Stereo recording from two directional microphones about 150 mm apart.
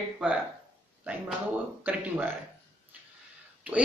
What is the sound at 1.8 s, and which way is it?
Speech, 10° right (ahead or behind).